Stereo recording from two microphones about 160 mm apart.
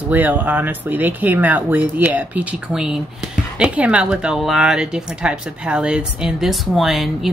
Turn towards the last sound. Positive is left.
turn(degrees=0)  # may be behind; listen again after turning